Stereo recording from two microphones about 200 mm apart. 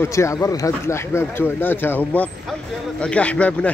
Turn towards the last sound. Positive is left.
turn(degrees=5)  # may be behind; listen again after turning